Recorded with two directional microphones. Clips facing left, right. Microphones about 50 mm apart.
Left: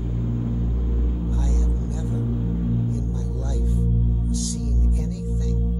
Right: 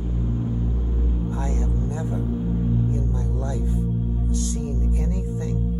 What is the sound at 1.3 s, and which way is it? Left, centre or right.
Vehicle, right.